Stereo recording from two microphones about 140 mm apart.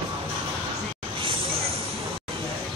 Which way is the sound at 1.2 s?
40° right (ahead or behind).